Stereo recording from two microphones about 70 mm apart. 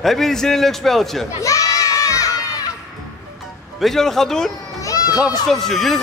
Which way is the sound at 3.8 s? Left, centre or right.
Centre.